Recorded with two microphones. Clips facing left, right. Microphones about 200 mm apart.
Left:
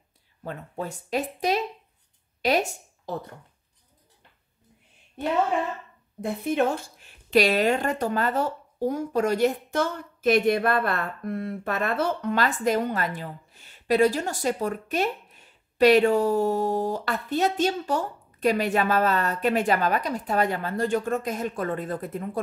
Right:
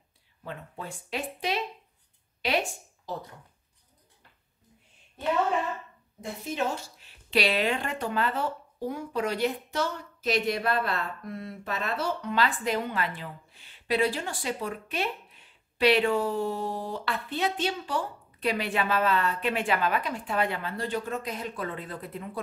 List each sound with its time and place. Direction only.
0.4 s a woman's voice: 45° left (ahead or behind)
6.2 s a woman's voice: 55° left (ahead or behind)